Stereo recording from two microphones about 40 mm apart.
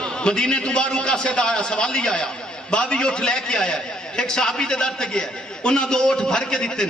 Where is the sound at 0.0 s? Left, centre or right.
Left.